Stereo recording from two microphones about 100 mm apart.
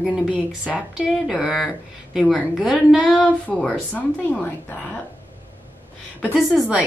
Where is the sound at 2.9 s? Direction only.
Centre (ahead or behind).